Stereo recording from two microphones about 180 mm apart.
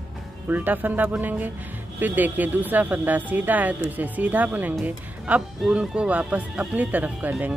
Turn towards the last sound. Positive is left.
turn(degrees=-5)  # may be behind; listen again after turning